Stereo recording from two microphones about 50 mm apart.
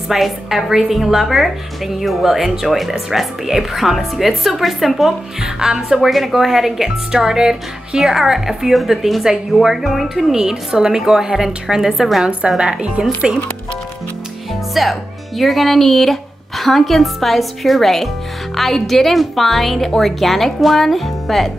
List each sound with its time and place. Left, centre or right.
0.1 s speech: centre
5.4 s speech: centre
12.3 s a woman's voice: right
14.7 s speech: centre